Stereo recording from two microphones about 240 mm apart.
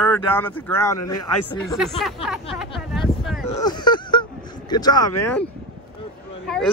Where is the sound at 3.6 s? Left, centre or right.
Centre.